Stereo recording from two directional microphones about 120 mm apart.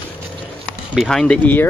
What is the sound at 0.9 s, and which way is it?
Speech, centre (ahead or behind).